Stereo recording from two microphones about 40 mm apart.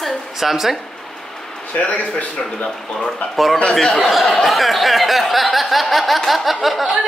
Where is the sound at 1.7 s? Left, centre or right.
Left.